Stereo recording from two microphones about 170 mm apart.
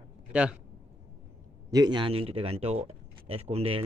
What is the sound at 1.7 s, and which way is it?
Speech, 25° right (ahead or behind).